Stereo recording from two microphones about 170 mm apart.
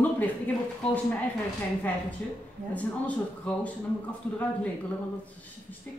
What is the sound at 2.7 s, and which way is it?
Speech, 10° left (ahead or behind).